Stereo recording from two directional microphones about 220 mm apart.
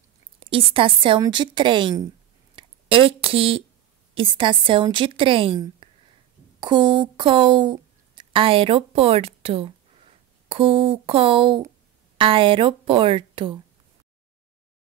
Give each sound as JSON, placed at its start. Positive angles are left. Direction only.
{"t": 0.4, "sound": "speech", "side_deg": -25}
{"t": 2.5, "sound": "a sound", "side_deg": -25}
{"t": 4.1, "sound": "a woman's voice", "side_deg": -25}